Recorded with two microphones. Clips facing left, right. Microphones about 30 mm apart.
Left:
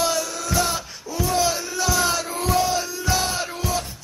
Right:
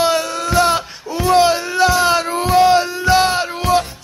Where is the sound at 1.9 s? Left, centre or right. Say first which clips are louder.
Right 8 dB; right.